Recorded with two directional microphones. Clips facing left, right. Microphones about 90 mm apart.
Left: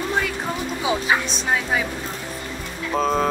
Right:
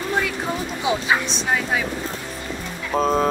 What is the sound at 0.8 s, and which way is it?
Speech, centre (ahead or behind).